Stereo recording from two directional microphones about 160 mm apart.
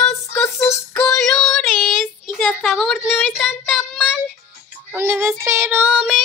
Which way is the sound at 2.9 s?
Centre (ahead or behind).